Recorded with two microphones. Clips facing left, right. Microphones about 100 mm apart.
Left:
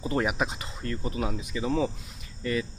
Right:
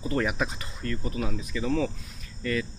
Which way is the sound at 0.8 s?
30° left (ahead or behind).